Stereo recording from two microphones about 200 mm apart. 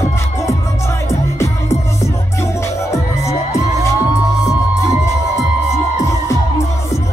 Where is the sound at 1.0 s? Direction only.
15° left (ahead or behind).